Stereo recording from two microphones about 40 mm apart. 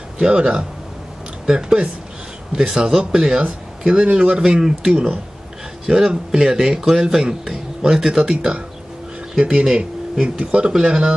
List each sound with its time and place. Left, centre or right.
0.2 s speech: right
4.0 s speech: right
4.9 s speech: right
5.9 s speech: centre